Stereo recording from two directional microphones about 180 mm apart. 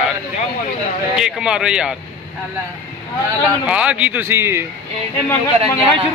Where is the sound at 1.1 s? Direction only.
5° right (ahead or behind).